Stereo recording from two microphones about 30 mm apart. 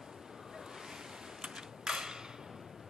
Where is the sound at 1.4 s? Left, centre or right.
Centre.